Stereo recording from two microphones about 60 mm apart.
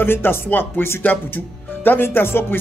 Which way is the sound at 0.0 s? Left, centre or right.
Left.